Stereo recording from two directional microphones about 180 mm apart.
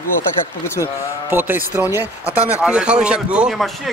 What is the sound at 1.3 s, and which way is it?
Speech, 10° right (ahead or behind).